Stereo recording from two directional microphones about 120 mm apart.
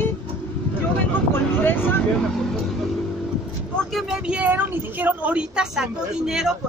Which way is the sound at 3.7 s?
5° left (ahead or behind).